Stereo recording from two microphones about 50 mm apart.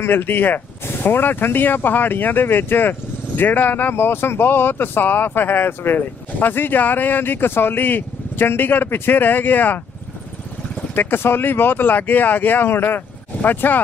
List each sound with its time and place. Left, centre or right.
0.0 s speech: left
11.0 s speech: left